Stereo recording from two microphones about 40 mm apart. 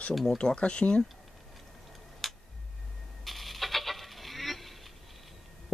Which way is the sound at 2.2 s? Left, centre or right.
Centre.